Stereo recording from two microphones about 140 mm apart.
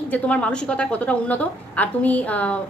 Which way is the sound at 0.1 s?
10° left (ahead or behind).